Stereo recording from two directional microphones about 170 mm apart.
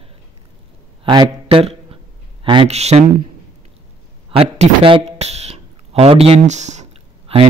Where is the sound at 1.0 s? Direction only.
30° right (ahead or behind).